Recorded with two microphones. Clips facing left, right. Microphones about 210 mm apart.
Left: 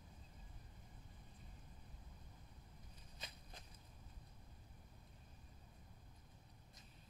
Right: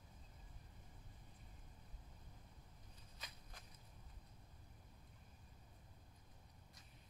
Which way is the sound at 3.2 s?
25° left (ahead or behind).